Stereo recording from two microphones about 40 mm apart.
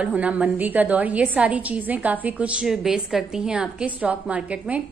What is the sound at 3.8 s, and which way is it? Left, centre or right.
A woman's voice, right.